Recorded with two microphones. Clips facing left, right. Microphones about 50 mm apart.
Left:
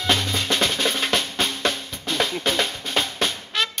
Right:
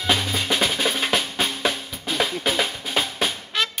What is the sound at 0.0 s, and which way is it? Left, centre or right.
Drum, centre.